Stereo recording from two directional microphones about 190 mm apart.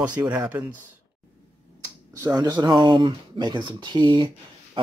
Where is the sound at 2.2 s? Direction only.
20° right (ahead or behind).